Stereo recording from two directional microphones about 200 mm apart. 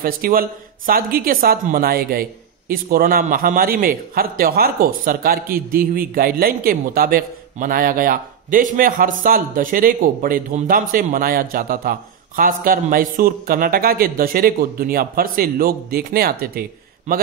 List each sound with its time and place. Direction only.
0.0 s a man's voice: 45° right (ahead or behind)